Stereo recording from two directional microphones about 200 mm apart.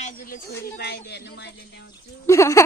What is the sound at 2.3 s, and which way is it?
Speech, 15° left (ahead or behind).